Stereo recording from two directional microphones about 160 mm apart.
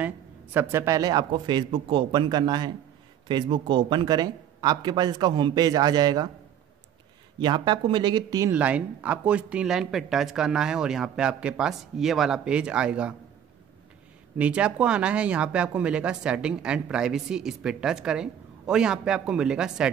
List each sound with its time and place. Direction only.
0.0 s speech: 10° right (ahead or behind)
7.3 s speech: 25° right (ahead or behind)
8.5 s speech: 10° right (ahead or behind)
14.4 s speech: 5° right (ahead or behind)